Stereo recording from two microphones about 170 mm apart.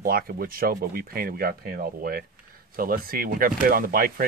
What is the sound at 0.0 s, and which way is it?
Speech, 60° right (ahead or behind).